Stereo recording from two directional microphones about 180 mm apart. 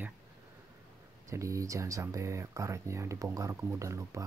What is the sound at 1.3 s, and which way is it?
Speech, 15° right (ahead or behind).